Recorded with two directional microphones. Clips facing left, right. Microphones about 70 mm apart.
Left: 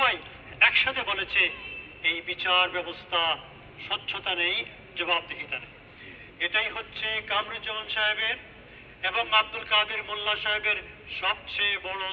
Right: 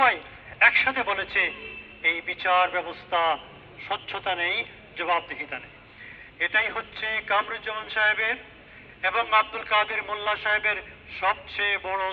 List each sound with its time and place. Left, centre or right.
0.0 s a man's voice: right